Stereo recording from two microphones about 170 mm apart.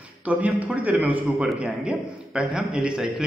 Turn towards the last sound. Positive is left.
turn(degrees=-5)  # may be behind; listen again after turning